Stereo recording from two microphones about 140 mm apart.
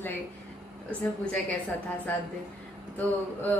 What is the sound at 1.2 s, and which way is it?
Speech, 10° left (ahead or behind).